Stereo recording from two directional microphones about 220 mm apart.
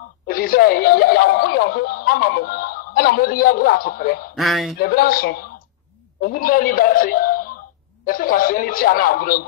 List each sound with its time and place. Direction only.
0.3 s speech: 40° left (ahead or behind)
4.4 s speech: centre (ahead or behind)
4.7 s speech: 40° left (ahead or behind)